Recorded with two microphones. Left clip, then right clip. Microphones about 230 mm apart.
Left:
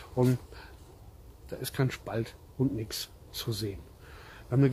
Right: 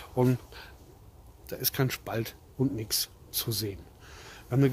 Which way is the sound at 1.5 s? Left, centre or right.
Right.